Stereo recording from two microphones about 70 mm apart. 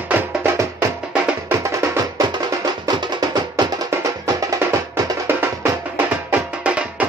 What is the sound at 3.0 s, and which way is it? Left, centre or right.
Music, right.